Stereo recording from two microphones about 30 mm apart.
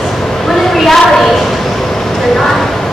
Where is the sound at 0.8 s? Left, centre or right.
Centre.